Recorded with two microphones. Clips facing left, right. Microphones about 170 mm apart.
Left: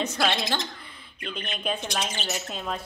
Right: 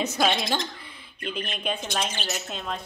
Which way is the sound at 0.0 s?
10° right (ahead or behind).